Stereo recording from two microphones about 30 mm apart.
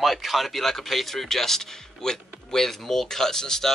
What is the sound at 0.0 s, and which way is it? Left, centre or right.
Speech, centre.